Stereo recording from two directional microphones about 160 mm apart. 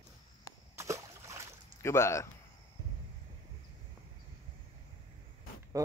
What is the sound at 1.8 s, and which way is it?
Speech, 15° left (ahead or behind).